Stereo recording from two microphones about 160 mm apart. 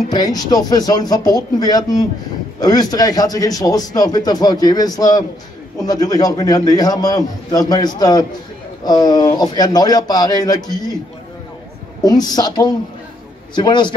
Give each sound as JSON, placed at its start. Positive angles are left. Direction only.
{"t": 0.1, "sound": "speech", "side_deg": 25}
{"t": 12.0, "sound": "speech", "side_deg": 25}